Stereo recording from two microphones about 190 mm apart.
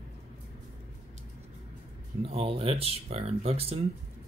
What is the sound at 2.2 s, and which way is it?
Speech, 30° right (ahead or behind).